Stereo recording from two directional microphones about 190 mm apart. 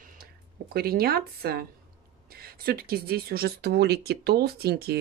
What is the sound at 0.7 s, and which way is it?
Speech, 55° right (ahead or behind).